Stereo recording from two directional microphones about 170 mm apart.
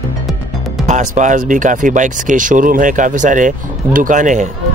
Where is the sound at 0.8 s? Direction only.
45° right (ahead or behind).